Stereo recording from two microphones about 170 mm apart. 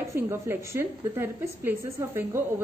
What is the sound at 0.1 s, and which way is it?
A woman's voice, 15° right (ahead or behind).